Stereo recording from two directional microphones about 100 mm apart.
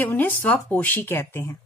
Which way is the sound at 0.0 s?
20° left (ahead or behind).